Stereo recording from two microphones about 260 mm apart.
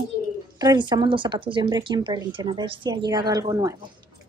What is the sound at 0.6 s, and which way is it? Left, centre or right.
Speech, centre.